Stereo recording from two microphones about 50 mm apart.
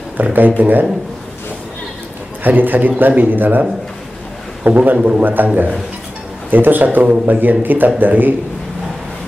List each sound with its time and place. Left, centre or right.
0.2 s a man's voice: right
2.4 s a man's voice: right
4.6 s a man's voice: right
4.9 s a man's voice: right